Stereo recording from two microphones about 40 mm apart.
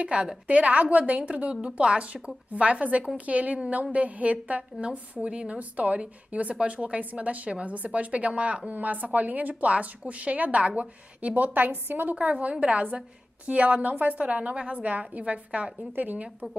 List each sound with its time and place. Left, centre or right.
0.0 s a woman's voice: right
8.7 s a woman's voice: right
12.2 s a woman's voice: right
15.9 s a woman's voice: right